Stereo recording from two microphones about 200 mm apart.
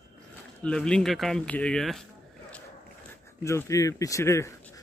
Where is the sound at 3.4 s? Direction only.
15° left (ahead or behind).